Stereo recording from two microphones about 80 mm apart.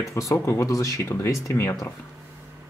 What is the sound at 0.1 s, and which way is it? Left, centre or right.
Speech, left.